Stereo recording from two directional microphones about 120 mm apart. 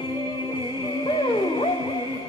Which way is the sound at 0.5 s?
40° left (ahead or behind).